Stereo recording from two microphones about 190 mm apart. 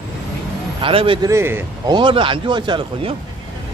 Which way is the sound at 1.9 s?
25° right (ahead or behind).